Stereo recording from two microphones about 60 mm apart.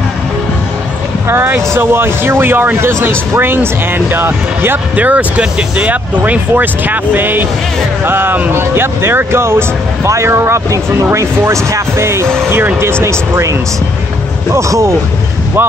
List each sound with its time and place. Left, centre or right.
1.3 s speech: right
4.9 s speech: right